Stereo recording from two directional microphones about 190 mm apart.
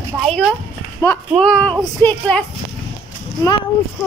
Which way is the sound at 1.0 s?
15° left (ahead or behind).